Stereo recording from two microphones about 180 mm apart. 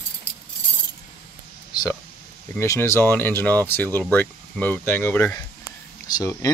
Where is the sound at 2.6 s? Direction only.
15° left (ahead or behind).